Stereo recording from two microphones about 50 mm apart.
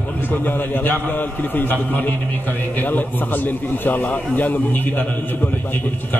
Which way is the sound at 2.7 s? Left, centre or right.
Left.